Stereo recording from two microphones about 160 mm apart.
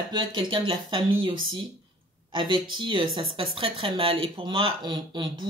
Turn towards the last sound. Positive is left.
turn(degrees=-30)  # may be behind; listen again after turning